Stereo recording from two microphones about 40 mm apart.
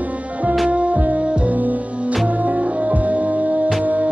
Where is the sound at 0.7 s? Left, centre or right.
Right.